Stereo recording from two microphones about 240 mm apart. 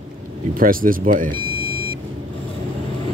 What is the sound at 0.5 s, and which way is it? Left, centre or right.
Speech, right.